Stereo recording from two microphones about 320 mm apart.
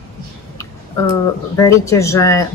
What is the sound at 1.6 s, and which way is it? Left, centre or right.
Speech, centre.